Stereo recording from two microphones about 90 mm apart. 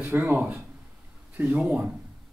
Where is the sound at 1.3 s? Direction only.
15° right (ahead or behind).